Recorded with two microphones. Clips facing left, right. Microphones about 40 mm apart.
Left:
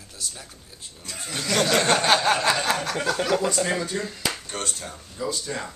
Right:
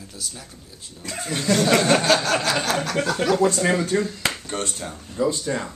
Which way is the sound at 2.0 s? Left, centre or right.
Left.